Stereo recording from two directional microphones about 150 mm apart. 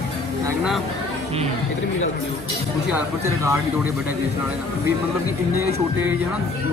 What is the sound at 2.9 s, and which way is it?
Speech, 20° right (ahead or behind).